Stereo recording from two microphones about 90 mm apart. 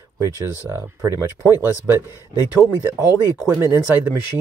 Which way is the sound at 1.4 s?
25° right (ahead or behind).